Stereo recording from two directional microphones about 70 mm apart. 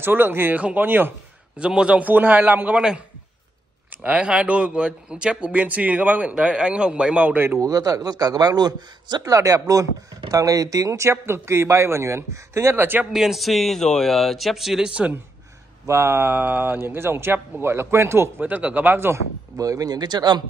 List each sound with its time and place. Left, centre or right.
0.0 s a man's voice: right
1.6 s a man's voice: centre
4.0 s speech: centre
7.5 s a man's voice: right
9.2 s speech: right
13.0 s speech: centre
15.9 s speech: right
18.4 s a man's voice: right
19.5 s speech: right